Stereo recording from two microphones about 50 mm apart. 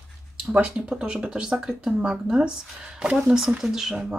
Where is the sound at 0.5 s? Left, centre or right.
Right.